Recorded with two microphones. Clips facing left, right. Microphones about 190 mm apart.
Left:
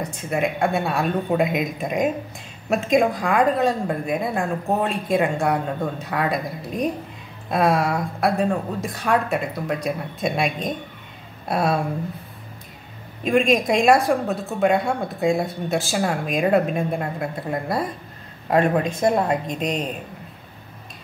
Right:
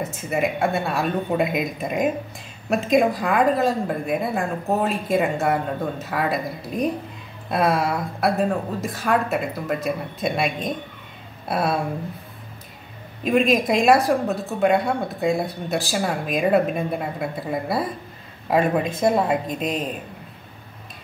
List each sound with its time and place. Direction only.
0.0 s speech: 5° right (ahead or behind)
13.2 s speech: centre (ahead or behind)